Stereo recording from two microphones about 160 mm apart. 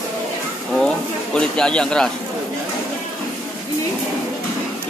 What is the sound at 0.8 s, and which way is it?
Speech, 5° left (ahead or behind).